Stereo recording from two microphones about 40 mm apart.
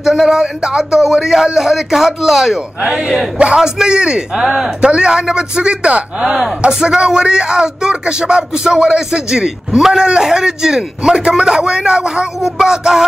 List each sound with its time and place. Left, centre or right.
0.0 s speech: centre; by 6.0 s right
6.2 s speech: centre